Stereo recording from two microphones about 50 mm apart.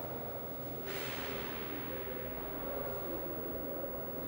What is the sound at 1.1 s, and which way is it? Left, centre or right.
Snort, centre.